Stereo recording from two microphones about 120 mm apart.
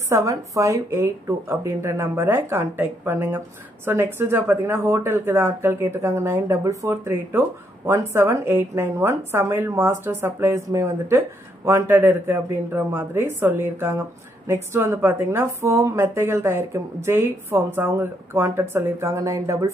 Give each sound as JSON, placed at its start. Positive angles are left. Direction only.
{"t": 0.1, "sound": "a woman's voice", "side_deg": -25}